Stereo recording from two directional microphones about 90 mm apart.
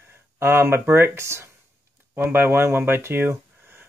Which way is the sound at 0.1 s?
25° right (ahead or behind).